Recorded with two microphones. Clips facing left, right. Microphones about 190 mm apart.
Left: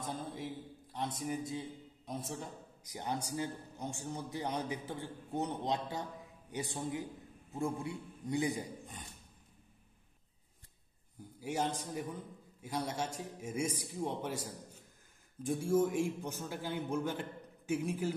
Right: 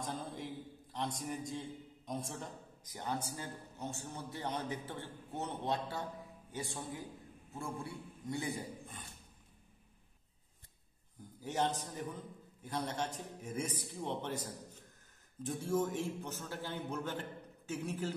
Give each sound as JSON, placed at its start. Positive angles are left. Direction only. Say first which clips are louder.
{"t": 0.0, "sound": "a sound", "louder": "left 1 dB", "side_deg": 0}
{"t": 0.9, "sound": "a man's voice", "louder": "left 2 dB", "side_deg": 5}
{"t": 2.8, "sound": "a man's voice", "louder": "left 1 dB", "side_deg": 15}
{"t": 11.4, "sound": "a man's voice", "louder": "even", "side_deg": 10}